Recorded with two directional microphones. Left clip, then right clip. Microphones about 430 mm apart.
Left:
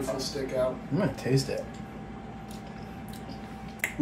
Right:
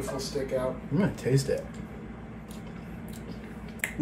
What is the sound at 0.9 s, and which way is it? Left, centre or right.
Speech, centre.